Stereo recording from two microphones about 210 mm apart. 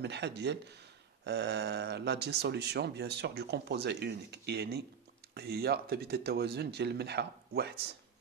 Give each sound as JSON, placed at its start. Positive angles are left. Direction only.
{"t": 0.0, "sound": "speech", "side_deg": -55}